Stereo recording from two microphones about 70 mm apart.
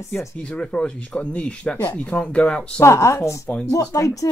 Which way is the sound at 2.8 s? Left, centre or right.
Left.